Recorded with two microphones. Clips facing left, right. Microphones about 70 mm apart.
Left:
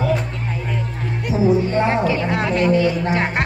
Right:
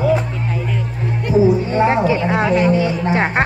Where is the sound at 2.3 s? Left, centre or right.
Centre.